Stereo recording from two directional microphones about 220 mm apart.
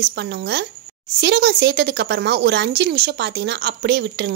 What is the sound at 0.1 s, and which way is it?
Speech, 50° right (ahead or behind).